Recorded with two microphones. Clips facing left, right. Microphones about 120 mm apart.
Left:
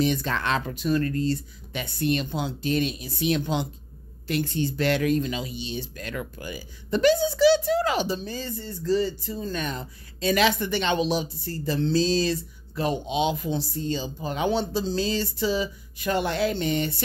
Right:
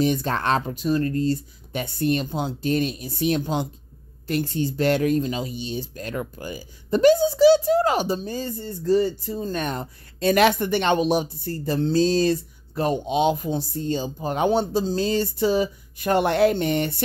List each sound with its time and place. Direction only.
0.0 s speech: 45° right (ahead or behind)